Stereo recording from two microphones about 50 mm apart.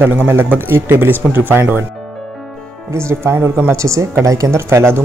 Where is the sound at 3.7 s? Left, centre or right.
Right.